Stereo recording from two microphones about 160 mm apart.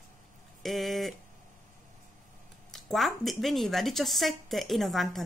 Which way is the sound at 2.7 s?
Centre (ahead or behind).